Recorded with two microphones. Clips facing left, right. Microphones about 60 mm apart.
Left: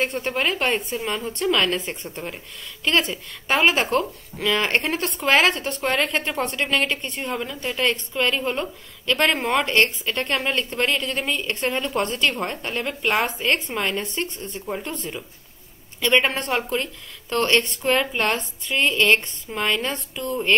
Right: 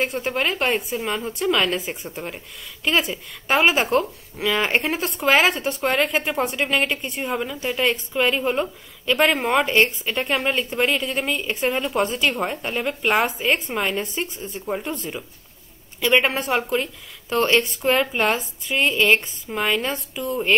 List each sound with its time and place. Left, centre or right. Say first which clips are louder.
0.0 s a woman's voice: even; centre